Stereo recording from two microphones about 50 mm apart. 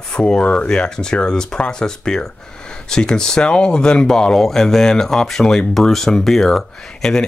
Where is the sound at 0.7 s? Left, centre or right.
Centre.